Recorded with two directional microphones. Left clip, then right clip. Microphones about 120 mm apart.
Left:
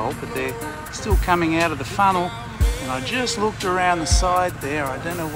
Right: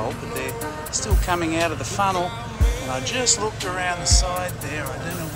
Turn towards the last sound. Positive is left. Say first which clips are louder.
# left 6 dB
turn(degrees=-10)  # may be behind; listen again after turning